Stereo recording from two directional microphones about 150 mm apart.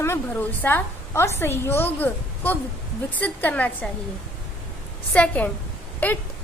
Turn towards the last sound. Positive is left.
turn(degrees=10)  # may be behind; listen again after turning